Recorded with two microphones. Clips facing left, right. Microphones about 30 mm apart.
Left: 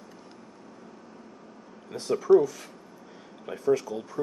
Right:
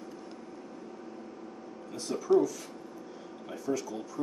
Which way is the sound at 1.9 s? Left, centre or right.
Left.